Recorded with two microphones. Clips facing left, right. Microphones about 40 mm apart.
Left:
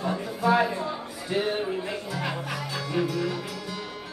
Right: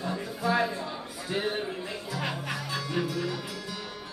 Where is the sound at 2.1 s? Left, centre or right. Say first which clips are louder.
Right 1 dB; centre.